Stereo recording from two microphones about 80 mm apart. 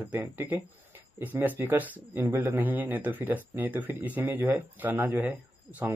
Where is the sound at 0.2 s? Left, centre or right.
Right.